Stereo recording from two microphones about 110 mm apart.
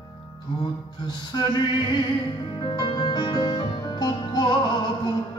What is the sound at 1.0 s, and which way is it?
Speech, 40° left (ahead or behind).